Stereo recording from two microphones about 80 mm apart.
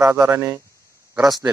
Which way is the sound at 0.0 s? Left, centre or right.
Right.